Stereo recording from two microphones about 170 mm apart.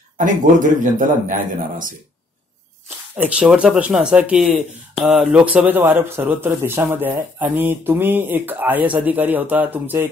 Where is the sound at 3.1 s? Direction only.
5° right (ahead or behind).